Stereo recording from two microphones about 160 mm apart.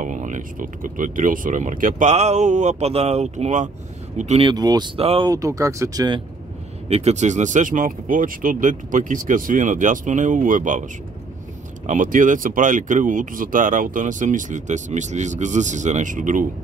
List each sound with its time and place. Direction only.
0.0 s speech: 55° right (ahead or behind)
4.5 s speech: 25° right (ahead or behind)
5.3 s speech: 20° right (ahead or behind)
6.9 s speech: 40° right (ahead or behind)
11.8 s speech: 50° right (ahead or behind)